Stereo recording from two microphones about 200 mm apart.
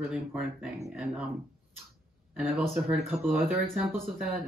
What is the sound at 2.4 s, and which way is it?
Speech, centre (ahead or behind).